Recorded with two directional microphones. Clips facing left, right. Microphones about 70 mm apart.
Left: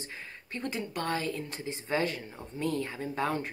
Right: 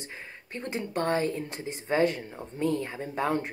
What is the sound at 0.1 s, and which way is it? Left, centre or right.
Speech, right.